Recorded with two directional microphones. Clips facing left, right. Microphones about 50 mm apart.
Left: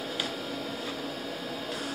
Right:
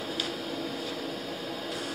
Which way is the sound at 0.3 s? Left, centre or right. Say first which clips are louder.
Right 1 dB; centre.